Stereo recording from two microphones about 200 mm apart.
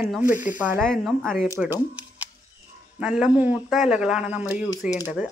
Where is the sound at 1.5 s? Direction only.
10° right (ahead or behind).